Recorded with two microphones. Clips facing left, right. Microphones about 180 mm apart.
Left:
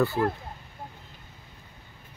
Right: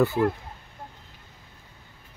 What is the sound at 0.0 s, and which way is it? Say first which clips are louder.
Speech: right 3 dB; 20° right (ahead or behind).